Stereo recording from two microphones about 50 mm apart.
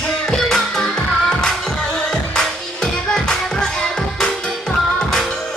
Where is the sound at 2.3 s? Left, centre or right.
Centre.